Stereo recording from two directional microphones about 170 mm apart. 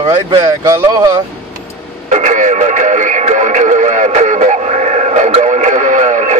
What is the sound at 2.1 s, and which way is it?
Radio, 45° right (ahead or behind).